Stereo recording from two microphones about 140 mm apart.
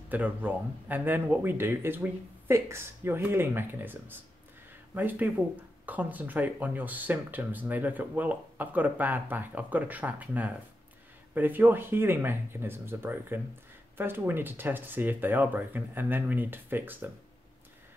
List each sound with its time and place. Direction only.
0.1 s speech: 10° right (ahead or behind)